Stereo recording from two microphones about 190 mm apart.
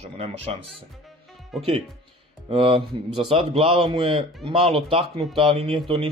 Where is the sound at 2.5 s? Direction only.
30° right (ahead or behind).